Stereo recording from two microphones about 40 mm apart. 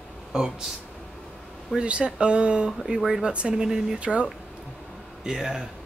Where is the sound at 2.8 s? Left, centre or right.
Centre.